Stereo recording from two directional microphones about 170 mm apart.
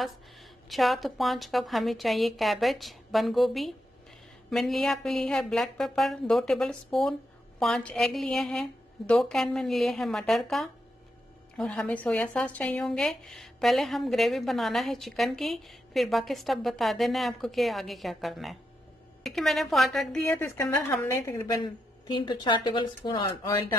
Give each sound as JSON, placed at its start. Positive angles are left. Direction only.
{"t": 0.7, "sound": "a woman's voice", "side_deg": 0}